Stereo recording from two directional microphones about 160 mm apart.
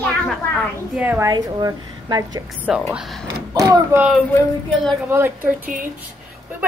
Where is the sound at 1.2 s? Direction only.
25° right (ahead or behind).